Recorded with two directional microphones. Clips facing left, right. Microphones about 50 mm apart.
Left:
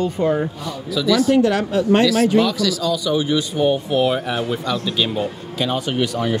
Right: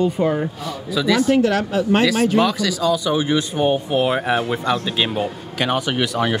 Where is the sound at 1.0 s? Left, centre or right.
Right.